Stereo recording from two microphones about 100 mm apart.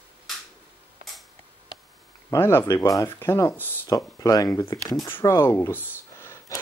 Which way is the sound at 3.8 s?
35° left (ahead or behind).